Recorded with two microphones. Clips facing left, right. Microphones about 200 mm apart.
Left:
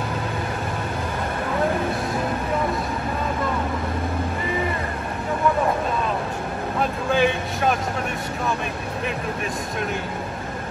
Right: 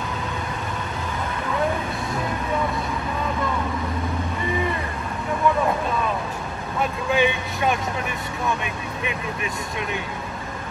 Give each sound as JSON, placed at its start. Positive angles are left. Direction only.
{"t": 6.8, "sound": "vehicle", "side_deg": 0}